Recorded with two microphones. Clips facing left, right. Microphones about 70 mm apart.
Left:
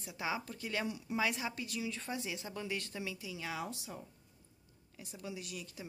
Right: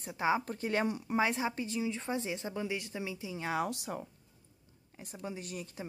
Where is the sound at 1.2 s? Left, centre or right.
Right.